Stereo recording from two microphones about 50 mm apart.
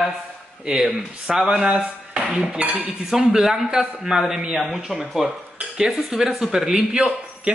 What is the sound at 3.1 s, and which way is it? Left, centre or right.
Speech, centre.